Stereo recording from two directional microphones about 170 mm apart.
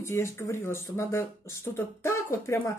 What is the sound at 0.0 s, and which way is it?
Speech, 15° left (ahead or behind).